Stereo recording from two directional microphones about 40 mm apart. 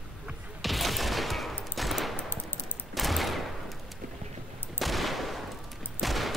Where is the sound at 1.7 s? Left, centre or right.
Centre.